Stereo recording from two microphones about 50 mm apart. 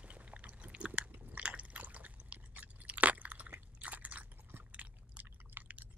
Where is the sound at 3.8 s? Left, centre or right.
Right.